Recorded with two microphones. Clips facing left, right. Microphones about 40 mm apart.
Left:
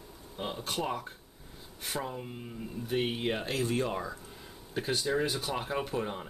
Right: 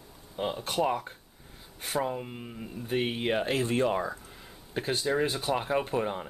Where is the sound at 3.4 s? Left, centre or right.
Right.